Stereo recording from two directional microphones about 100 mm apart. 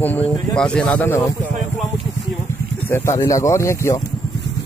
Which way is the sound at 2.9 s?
30° left (ahead or behind).